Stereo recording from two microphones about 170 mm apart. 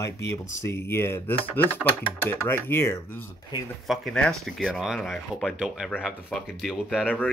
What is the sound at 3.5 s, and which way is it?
Speech, 25° left (ahead or behind).